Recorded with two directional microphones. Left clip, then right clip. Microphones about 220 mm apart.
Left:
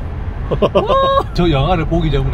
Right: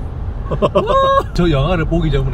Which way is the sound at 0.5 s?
20° left (ahead or behind).